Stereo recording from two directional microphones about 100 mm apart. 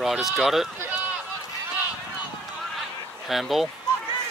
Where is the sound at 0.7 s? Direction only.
20° right (ahead or behind).